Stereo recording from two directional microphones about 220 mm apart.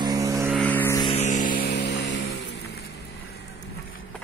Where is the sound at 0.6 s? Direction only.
5° left (ahead or behind).